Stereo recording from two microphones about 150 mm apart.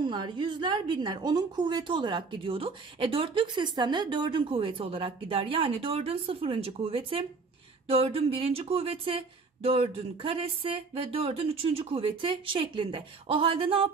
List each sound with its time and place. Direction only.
0.0 s a woman's voice: 30° right (ahead or behind)